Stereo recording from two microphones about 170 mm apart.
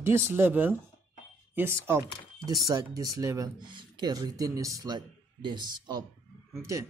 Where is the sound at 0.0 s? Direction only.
15° right (ahead or behind).